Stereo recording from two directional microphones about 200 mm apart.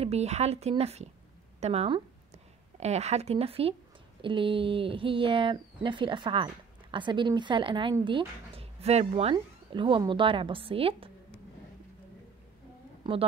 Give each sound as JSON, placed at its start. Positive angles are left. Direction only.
{"t": 0.0, "sound": "speech", "side_deg": -30}
{"t": 13.0, "sound": "a woman's voice", "side_deg": -25}